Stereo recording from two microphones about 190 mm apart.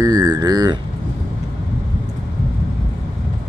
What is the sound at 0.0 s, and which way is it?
Speech, 20° right (ahead or behind).